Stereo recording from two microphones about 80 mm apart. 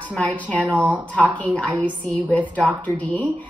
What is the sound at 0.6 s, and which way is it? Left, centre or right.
Speech, centre.